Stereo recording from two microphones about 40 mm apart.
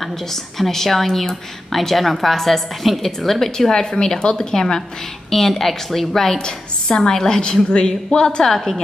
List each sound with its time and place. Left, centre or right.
0.0 s a woman's voice: centre
6.3 s a woman's voice: centre
8.5 s a woman's voice: centre